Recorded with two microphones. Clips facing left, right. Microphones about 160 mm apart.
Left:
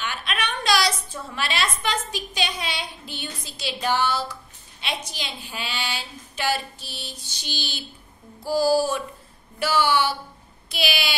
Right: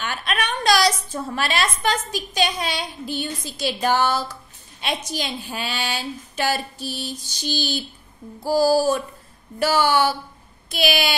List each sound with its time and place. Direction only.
0.0 s a woman's voice: 45° right (ahead or behind)
8.5 s child singing: 40° right (ahead or behind)
9.6 s speech: 45° right (ahead or behind)